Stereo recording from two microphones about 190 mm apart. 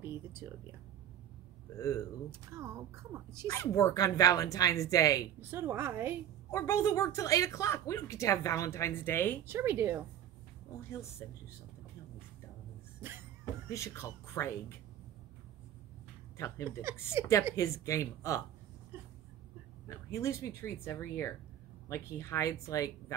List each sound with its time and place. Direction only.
0.0 s speech: 10° right (ahead or behind)
1.8 s speech: 15° left (ahead or behind)
2.5 s speech: 15° right (ahead or behind)
3.4 s speech: 15° left (ahead or behind)
5.4 s speech: 15° right (ahead or behind)
6.5 s speech: 15° left (ahead or behind)
9.5 s speech: 15° right (ahead or behind)
10.9 s speech: 15° left (ahead or behind)
13.7 s speech: 15° left (ahead or behind)
16.3 s speech: 15° left (ahead or behind)
17.2 s speech: 15° right (ahead or behind)
17.6 s speech: 15° left (ahead or behind)
19.9 s speech: 15° left (ahead or behind)